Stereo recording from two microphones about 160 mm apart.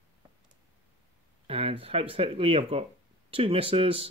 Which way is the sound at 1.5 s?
35° right (ahead or behind).